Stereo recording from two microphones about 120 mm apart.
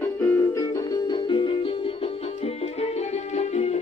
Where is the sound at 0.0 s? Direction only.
25° left (ahead or behind); by 1.7 s 45° left (ahead or behind).